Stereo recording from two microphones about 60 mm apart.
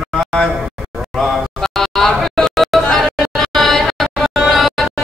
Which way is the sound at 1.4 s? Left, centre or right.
Centre.